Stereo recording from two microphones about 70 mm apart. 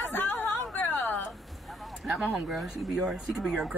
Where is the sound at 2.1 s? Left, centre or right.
Centre.